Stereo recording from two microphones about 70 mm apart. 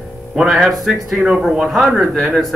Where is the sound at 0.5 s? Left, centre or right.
Centre.